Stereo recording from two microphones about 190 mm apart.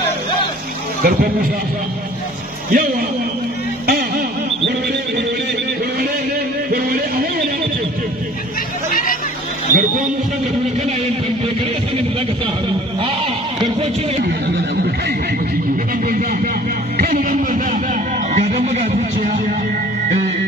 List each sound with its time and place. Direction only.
1.0 s speech: 50° right (ahead or behind)
2.7 s speech: 50° right (ahead or behind)
3.8 s music: 55° right (ahead or behind)
9.7 s a man's voice: 45° right (ahead or behind)
16.1 s music: 50° right (ahead or behind)